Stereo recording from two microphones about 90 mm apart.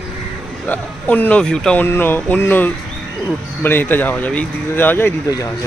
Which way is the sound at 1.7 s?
25° left (ahead or behind).